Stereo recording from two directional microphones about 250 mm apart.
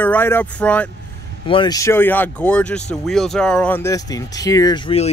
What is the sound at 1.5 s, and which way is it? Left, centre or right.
Speech, centre.